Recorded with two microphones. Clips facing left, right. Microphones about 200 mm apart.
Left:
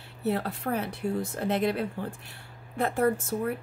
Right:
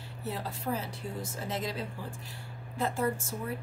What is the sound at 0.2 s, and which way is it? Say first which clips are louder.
Speech: left 8 dB; 65° left (ahead or behind).